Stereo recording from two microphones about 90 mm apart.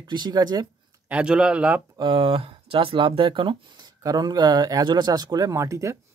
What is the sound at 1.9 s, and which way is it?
Speech, 70° right (ahead or behind).